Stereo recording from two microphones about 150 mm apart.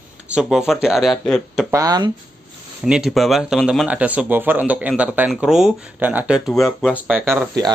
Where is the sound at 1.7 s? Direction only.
25° right (ahead or behind).